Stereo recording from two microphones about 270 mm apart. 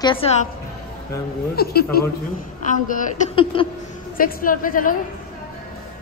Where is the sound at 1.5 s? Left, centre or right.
Left; by 3.7 s centre.